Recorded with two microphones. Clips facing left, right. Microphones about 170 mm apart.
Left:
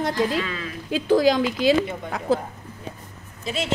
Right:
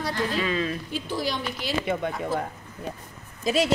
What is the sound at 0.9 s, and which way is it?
Speech, 90° left.